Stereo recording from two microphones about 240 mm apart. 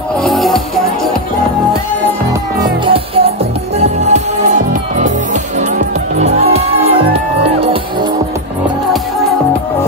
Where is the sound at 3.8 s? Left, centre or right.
Right.